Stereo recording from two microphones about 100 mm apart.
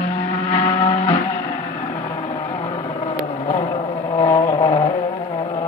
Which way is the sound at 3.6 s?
35° left (ahead or behind).